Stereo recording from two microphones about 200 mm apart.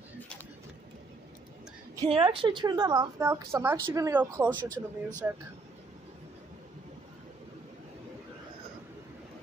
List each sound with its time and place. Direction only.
2.0 s a woman's voice: 25° right (ahead or behind); by 4.5 s 10° right (ahead or behind)
4.5 s speech: 10° left (ahead or behind)